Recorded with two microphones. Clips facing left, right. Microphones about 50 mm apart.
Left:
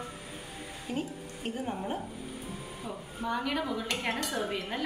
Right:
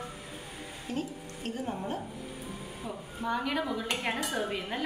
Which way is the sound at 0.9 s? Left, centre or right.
Centre.